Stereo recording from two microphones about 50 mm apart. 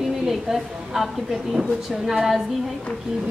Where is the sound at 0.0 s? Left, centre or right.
Centre.